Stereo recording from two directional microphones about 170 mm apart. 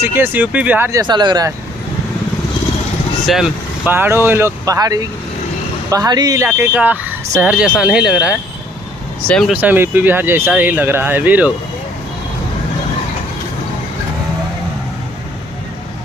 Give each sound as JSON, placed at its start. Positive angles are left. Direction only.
{"t": 0.0, "sound": "speech", "side_deg": -15}
{"t": 1.0, "sound": "speech", "side_deg": -25}
{"t": 3.3, "sound": "speech", "side_deg": -5}
{"t": 9.5, "sound": "speech", "side_deg": -10}